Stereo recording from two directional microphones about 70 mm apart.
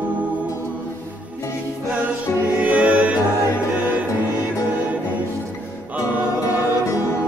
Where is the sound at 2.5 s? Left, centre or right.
Centre.